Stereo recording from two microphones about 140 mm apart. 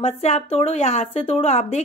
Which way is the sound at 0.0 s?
50° left (ahead or behind).